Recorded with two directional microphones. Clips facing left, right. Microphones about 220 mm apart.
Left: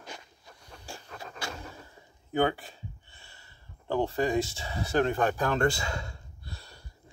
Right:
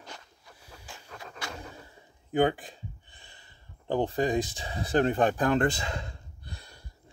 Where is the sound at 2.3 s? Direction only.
15° right (ahead or behind).